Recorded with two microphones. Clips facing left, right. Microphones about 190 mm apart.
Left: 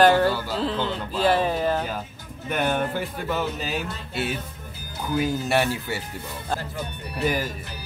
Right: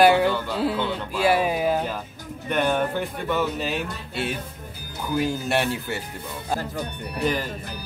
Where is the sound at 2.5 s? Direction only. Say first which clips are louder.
Right 2 dB; 5° left (ahead or behind).